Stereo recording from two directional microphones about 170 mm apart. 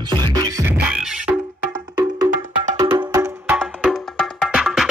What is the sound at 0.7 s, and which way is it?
Music, 5° right (ahead or behind).